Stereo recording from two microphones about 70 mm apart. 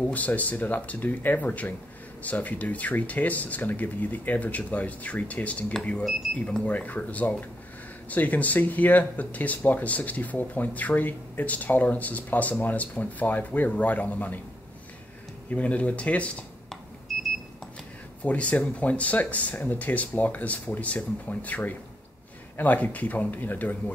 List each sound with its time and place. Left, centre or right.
0.0 s speech: left
15.5 s speech: centre
18.2 s speech: left
22.6 s speech: left